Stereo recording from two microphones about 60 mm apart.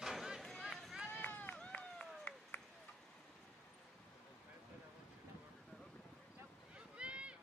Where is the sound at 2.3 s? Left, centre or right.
Left.